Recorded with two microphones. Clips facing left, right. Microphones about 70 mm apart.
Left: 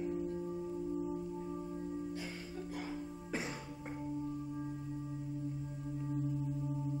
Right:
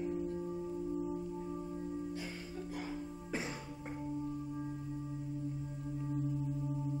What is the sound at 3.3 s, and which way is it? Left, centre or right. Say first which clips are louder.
Music: even; left.